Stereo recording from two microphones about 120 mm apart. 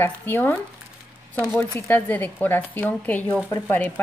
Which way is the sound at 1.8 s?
15° left (ahead or behind).